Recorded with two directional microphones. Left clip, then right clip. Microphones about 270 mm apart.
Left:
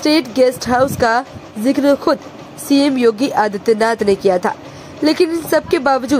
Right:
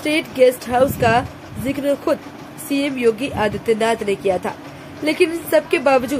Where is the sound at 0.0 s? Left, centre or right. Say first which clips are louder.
Left 2 dB; left.